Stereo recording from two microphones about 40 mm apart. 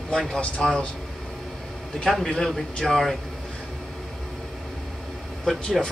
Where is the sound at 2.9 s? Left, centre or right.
Centre.